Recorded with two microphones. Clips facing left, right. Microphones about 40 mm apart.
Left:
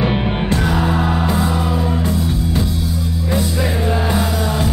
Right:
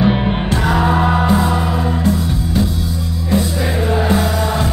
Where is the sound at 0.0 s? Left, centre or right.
Centre.